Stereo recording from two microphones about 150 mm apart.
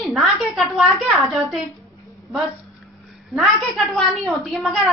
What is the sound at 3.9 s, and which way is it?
Speech, centre (ahead or behind).